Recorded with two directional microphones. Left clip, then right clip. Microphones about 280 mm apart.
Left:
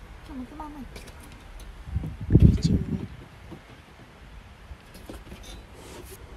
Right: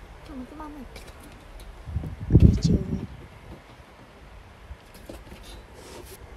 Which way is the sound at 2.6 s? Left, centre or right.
Centre.